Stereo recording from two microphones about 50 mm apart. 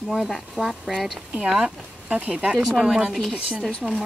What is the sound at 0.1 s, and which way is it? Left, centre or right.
Speech, centre.